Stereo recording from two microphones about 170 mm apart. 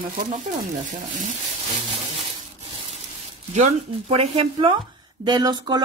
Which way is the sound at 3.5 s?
40° right (ahead or behind).